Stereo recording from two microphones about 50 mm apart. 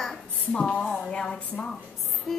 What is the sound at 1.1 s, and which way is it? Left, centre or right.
Speech, centre.